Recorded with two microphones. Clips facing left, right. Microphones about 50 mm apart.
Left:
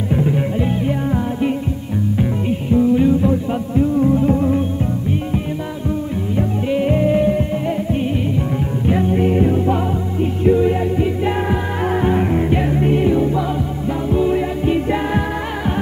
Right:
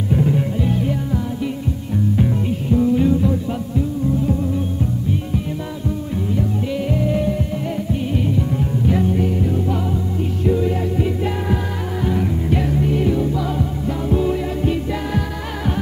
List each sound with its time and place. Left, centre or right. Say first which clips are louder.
0.1 s music: even; centre
2.7 s music: left 2 dB; centre
4.0 s music: left 4 dB; left
6.3 s music: left 4 dB; left
10.4 s music: left 5 dB; left
12.0 s music: left 3 dB; left
12.4 s music: left 3 dB; left
14.3 s music: left 3 dB; left